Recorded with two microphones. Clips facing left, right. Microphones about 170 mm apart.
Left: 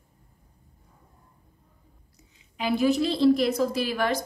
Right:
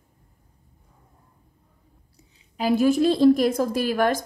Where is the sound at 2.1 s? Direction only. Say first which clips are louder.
Right 4 dB; 40° right (ahead or behind).